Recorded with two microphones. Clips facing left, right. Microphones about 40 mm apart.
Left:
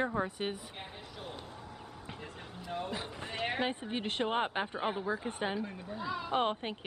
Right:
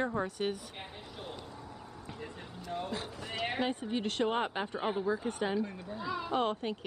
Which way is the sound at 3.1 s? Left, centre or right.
Left.